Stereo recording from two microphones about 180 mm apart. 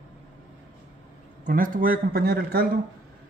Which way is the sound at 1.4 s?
50° right (ahead or behind).